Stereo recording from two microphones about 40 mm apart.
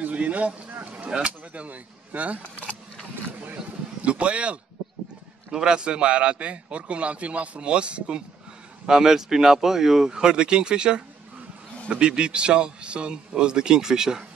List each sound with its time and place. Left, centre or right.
0.0 s a sound: right
0.9 s speech: right
4.0 s speech: right
5.5 s a man's voice: centre
8.8 s a man's voice: centre